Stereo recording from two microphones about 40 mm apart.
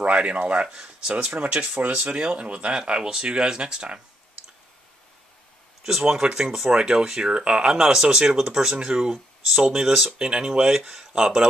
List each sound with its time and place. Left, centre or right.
0.1 s speech: right
2.0 s speech: right
5.9 s speech: centre
10.1 s speech: right